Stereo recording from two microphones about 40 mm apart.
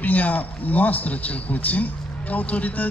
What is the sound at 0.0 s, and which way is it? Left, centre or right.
A man's voice, left.